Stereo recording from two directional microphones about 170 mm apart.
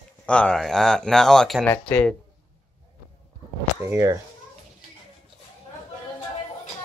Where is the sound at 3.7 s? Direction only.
15° right (ahead or behind).